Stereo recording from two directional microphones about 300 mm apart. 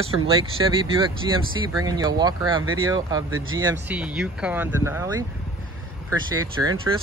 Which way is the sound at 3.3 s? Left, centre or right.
Right.